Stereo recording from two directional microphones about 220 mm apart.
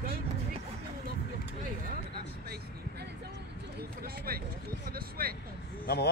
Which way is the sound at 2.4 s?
45° right (ahead or behind).